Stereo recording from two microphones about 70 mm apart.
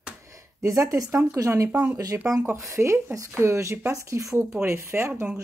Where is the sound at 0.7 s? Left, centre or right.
Right.